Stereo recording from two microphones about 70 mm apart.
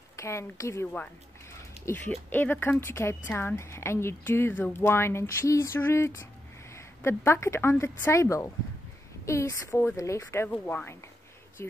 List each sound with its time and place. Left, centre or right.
0.1 s a woman's voice: left
2.0 s speech: left
4.8 s speech: left
10.5 s speech: left